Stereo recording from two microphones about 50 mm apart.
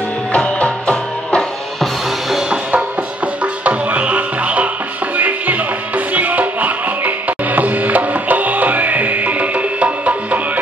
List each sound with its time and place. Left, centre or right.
0.6 s music: left
1.8 s music: centre
3.6 s music: right